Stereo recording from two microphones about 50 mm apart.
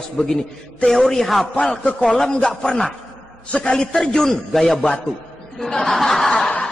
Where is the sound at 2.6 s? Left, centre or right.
Centre.